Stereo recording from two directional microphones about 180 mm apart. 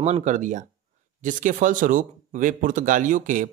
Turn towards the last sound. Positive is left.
turn(degrees=-45)  # may be behind; listen again after turning